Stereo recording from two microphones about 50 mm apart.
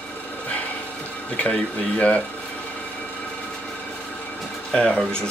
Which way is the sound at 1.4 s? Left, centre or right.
Left.